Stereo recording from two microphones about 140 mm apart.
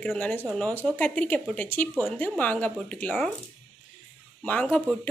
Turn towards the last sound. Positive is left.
turn(degrees=10)  # may be behind; listen again after turning